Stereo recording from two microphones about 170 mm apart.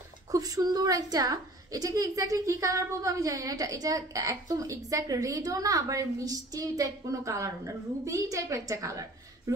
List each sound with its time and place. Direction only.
0.3 s a woman's voice: 20° right (ahead or behind)